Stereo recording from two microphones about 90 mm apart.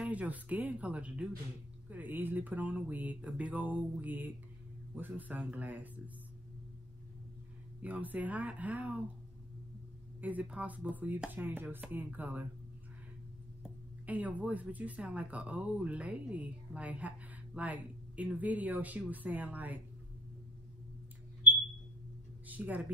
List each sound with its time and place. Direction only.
0.0 s speech: 15° right (ahead or behind)
4.0 s chopping: 20° right (ahead or behind)
4.9 s speech: 20° right (ahead or behind)
7.8 s speech: 15° right (ahead or behind)
10.2 s chopping: 15° right (ahead or behind)
14.0 s speech: 15° right (ahead or behind)
22.5 s a sound: 20° right (ahead or behind)